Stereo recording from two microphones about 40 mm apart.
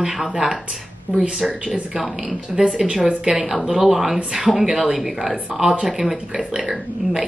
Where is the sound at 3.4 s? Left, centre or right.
Centre.